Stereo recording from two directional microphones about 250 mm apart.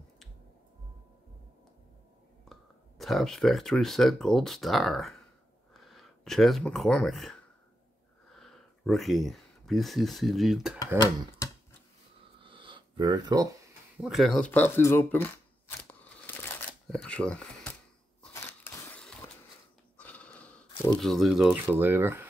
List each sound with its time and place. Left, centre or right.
2.5 s speech: centre
11.0 s speech: centre
12.4 s a sound: centre
14.0 s speech: centre
15.9 s crunch: centre
16.9 s speech: centre
18.3 s crushing: centre
20.0 s a sound: centre
21.0 s speech: centre